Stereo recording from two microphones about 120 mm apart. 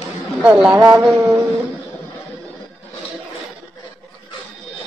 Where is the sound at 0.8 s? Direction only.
20° right (ahead or behind).